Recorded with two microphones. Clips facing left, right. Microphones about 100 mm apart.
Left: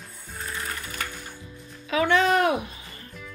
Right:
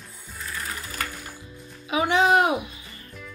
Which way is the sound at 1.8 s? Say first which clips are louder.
Right 1 dB; 15° right (ahead or behind).